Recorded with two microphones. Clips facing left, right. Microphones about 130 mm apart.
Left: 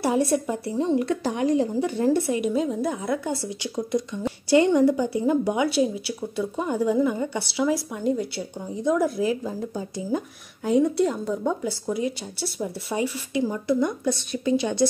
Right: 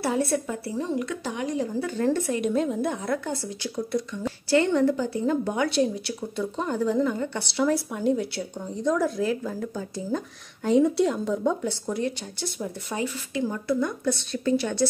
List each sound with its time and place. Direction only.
0.0 s speech: 15° left (ahead or behind)
0.9 s speech: 35° left (ahead or behind)
1.8 s speech: 15° left (ahead or behind)
3.4 s speech: 20° left (ahead or behind)
10.6 s speech: centre (ahead or behind); by 14.9 s 15° left (ahead or behind)